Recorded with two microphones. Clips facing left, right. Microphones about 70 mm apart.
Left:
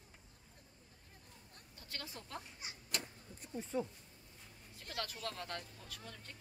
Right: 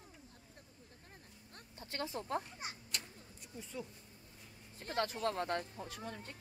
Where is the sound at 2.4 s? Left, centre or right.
Right.